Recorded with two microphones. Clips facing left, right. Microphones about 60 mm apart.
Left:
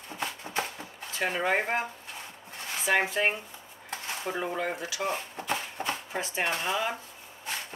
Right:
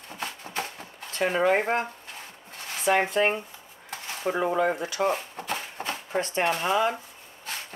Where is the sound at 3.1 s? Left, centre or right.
Right.